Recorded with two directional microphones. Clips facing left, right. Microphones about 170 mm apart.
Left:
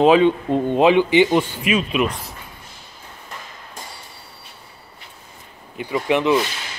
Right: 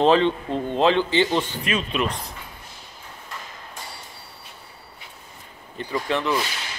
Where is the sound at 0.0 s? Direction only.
10° left (ahead or behind).